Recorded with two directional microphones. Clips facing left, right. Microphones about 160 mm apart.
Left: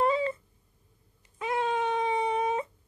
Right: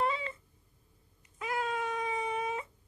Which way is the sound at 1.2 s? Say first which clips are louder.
Left 5 dB; 25° left (ahead or behind).